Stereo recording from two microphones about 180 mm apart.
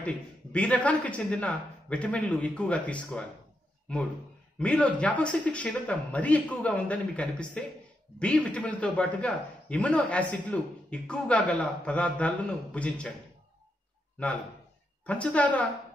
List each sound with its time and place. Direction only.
0.0 s a man's voice: 5° left (ahead or behind)
4.6 s a man's voice: 5° left (ahead or behind)
15.0 s a man's voice: 5° left (ahead or behind)